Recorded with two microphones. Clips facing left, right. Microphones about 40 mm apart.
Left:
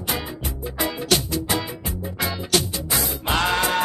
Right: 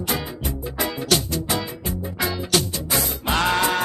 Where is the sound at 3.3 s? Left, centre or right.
Centre.